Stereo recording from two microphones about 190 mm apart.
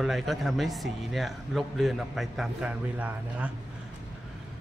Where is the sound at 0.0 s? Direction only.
Centre (ahead or behind).